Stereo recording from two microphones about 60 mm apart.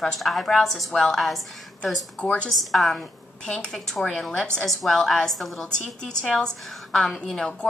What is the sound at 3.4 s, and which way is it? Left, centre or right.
A woman's voice, centre.